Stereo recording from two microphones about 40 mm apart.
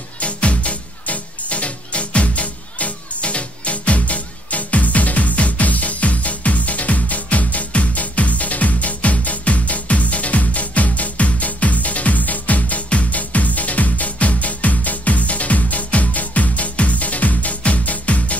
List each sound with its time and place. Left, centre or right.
0.2 s music: left